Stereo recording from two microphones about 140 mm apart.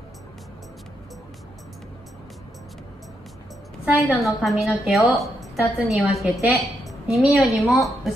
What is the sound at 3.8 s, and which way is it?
A woman's voice, 5° right (ahead or behind).